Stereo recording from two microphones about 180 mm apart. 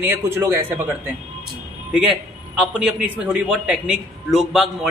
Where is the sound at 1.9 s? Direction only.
5° right (ahead or behind).